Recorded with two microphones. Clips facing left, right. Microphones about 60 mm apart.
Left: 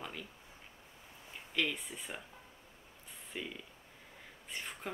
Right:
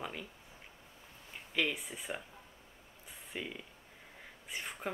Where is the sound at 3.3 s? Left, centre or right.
Centre.